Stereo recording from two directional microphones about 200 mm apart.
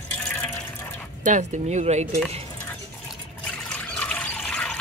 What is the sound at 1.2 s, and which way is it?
Speech, 35° right (ahead or behind).